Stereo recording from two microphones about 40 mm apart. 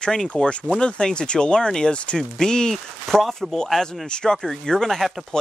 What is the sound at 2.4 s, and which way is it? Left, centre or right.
Speech, centre.